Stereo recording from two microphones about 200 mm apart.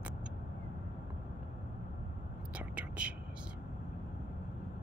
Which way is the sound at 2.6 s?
5° right (ahead or behind).